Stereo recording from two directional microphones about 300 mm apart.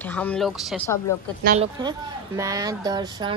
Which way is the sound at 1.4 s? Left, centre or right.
Right.